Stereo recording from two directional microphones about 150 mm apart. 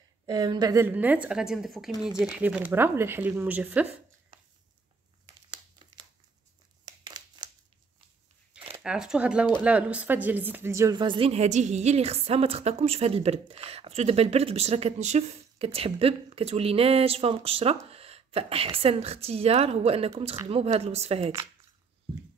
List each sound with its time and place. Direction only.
0.3 s a woman's voice: 25° right (ahead or behind)
0.8 s speech: 10° right (ahead or behind)
5.2 s crumpling: 30° right (ahead or behind)
6.8 s a sound: 25° right (ahead or behind)
8.8 s a woman's voice: 5° right (ahead or behind); by 21.3 s 45° right (ahead or behind)